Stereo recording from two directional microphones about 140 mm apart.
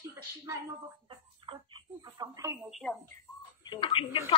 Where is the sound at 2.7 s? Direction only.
5° left (ahead or behind).